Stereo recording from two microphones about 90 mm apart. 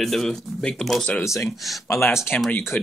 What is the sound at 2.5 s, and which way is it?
Speech, 25° left (ahead or behind).